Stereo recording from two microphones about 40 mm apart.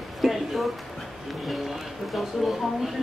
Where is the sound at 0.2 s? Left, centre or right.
Centre.